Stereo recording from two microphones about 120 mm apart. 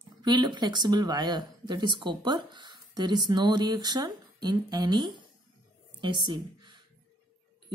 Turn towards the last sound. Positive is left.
turn(degrees=-40)  # may be behind; listen again after turning